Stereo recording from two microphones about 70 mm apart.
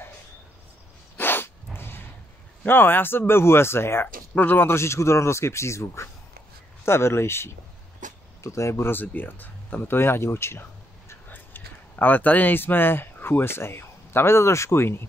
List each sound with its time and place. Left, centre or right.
1.1 s dog: left
2.6 s speech: left
8.9 s speech: left
11.2 s speech: left